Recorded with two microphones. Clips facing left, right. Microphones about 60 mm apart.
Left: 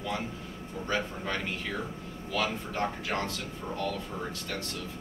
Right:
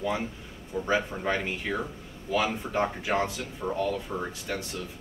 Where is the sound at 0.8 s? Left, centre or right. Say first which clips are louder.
Right 5 dB; centre.